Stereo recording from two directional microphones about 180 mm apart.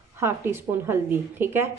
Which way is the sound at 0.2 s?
15° right (ahead or behind).